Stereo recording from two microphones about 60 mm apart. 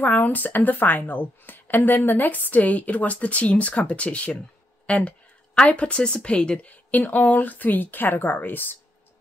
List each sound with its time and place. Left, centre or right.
0.0 s speech: left